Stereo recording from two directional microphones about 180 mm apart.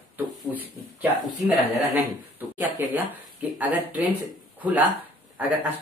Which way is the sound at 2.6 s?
10° right (ahead or behind).